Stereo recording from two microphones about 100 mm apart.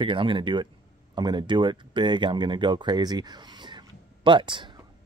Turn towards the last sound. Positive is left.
turn(degrees=-55)  # may be behind; listen again after turning